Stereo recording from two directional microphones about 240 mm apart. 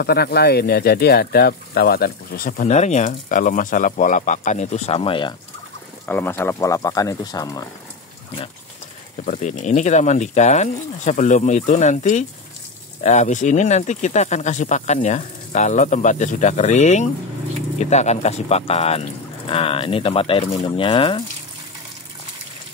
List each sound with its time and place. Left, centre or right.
0.0 s speech: left
6.0 s speech: centre
9.2 s speech: left